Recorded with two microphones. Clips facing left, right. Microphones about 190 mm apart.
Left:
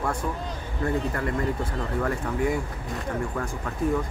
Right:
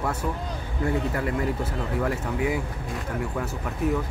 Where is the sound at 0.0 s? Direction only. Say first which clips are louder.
Even; 5° right (ahead or behind).